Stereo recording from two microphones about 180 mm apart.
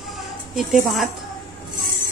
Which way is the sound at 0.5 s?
Centre (ahead or behind).